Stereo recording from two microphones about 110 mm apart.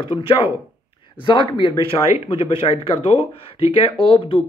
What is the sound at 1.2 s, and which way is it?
Speech, 45° left (ahead or behind).